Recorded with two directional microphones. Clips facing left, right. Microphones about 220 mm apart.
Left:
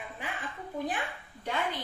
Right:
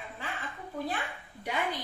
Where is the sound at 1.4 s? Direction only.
10° right (ahead or behind).